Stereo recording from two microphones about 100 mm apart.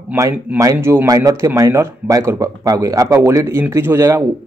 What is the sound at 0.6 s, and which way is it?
Speech, 30° right (ahead or behind).